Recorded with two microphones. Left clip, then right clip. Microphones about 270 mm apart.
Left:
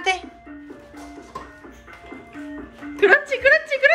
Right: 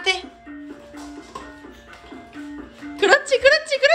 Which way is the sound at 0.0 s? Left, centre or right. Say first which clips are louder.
Even; centre.